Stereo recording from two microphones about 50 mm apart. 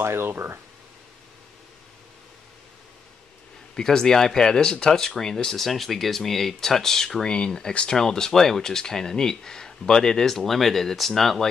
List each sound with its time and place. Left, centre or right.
0.0 s speech: right
3.7 s speech: centre